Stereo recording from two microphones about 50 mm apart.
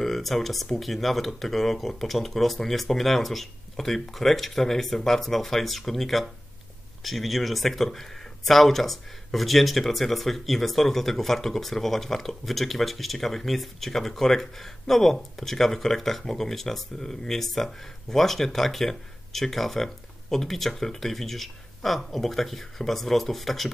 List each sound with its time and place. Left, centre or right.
0.0 s speech: centre